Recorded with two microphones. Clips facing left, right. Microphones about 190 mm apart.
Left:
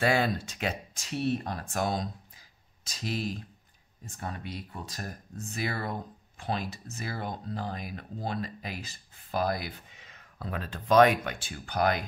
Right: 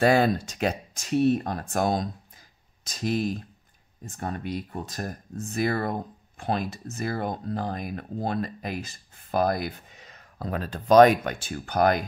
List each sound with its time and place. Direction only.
0.0 s speech: 45° right (ahead or behind)